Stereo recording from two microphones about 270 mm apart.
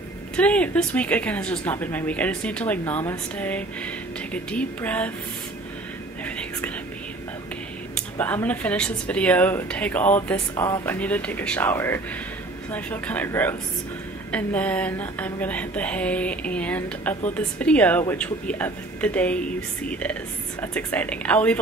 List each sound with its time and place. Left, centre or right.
0.4 s speech: centre
6.2 s whispering: centre
7.9 s speech: centre